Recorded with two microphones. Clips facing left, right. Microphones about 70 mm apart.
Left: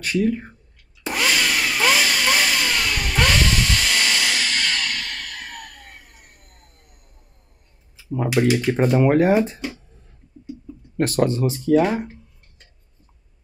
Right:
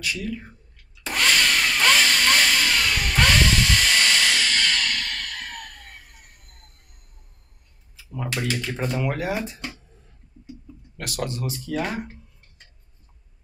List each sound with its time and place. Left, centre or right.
0.0 s speech: left
1.0 s a sound: centre
7.9 s a sound: left
8.5 s speech: left
8.8 s speech: left
11.0 s speech: left
11.8 s speech: centre